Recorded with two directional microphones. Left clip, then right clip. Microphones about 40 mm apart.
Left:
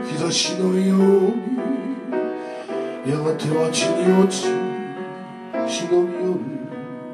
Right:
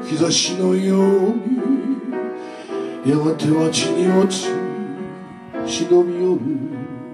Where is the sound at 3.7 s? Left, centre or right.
Centre.